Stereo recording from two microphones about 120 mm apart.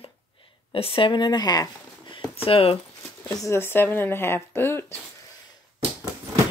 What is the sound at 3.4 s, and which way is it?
Speech, 20° left (ahead or behind).